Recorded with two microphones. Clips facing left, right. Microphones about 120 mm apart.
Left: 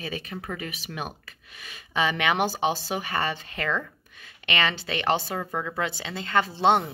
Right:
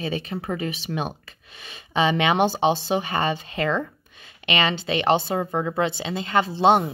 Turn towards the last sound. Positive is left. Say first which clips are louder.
# right 4 dB
turn(degrees=-15)  # may be behind; listen again after turning